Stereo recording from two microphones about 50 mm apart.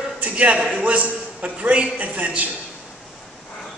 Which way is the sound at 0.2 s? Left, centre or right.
Right.